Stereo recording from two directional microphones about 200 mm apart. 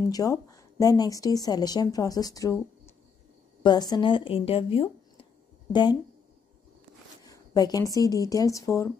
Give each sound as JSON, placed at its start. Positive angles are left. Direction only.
{"t": 0.1, "sound": "speech", "side_deg": 15}
{"t": 3.6, "sound": "speech", "side_deg": 20}
{"t": 7.2, "sound": "speech", "side_deg": 20}